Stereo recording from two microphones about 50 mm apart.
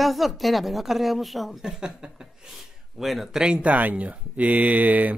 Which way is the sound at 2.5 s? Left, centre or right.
Centre.